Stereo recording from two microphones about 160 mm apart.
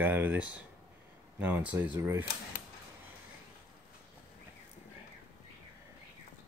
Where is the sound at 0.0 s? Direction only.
10° right (ahead or behind).